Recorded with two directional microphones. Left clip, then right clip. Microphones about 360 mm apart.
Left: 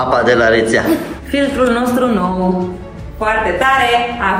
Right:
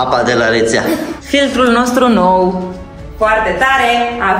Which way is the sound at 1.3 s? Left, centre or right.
Centre.